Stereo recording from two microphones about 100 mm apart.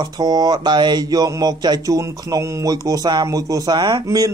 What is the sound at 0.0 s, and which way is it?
A man's voice, 45° right (ahead or behind).